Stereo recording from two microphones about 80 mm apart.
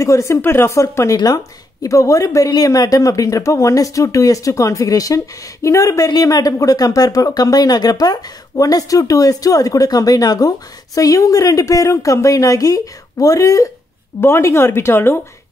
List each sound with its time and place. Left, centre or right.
0.0 s speech: left
1.1 s speech: left
14.2 s speech: left